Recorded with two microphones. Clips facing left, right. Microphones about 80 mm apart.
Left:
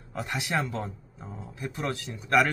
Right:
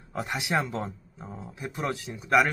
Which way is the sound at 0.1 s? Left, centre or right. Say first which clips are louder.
Right 2 dB; centre.